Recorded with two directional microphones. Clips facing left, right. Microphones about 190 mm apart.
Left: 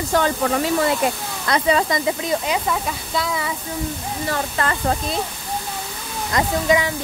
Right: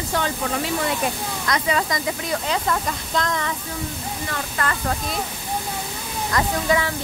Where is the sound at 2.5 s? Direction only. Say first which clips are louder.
Left 1 dB; 5° left (ahead or behind).